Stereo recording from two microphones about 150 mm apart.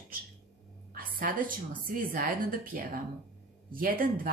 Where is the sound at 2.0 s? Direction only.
70° right (ahead or behind).